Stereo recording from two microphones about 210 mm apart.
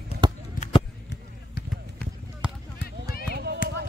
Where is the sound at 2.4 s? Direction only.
5° right (ahead or behind).